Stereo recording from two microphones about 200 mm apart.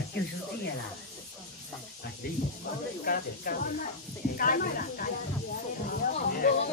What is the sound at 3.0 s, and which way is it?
A man's voice, 45° left (ahead or behind).